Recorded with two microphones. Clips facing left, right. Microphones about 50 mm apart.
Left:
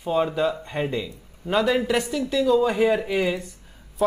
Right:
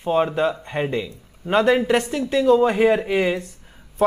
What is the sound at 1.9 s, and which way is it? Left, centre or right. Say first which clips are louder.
Speech: right 3 dB; right.